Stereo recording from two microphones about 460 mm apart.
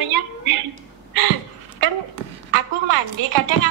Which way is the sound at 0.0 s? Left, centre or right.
Right.